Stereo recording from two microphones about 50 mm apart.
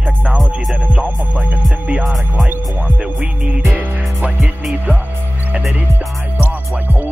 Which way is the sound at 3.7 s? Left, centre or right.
Right.